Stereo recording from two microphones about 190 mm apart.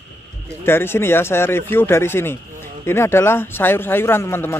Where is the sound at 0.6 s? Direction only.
10° left (ahead or behind).